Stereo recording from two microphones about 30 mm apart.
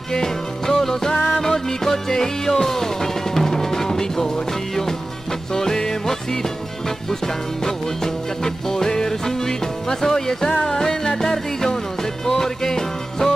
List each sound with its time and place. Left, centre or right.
0.1 s music: centre
5.5 s music: centre
7.6 s music: centre